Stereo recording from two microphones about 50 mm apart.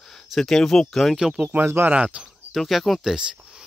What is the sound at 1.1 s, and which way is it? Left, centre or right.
Speech, centre.